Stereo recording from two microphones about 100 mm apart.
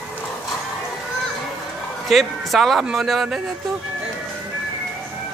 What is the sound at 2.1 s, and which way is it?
Speech, centre (ahead or behind).